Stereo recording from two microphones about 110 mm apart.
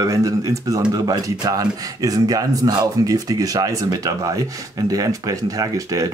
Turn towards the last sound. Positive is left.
turn(degrees=-35)  # may be behind; listen again after turning